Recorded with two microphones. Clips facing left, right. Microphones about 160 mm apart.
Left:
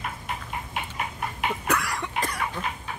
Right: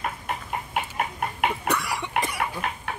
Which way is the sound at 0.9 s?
60° right (ahead or behind).